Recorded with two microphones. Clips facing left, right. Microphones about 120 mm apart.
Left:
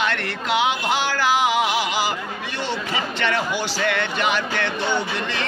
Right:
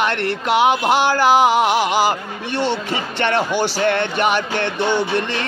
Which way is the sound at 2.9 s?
30° right (ahead or behind).